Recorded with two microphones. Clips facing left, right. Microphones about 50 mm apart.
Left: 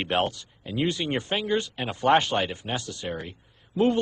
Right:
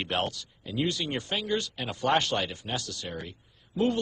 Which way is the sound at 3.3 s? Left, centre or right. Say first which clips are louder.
Left 3 dB; left.